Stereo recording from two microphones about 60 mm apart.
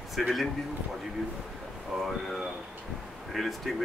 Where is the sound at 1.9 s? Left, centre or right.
Centre.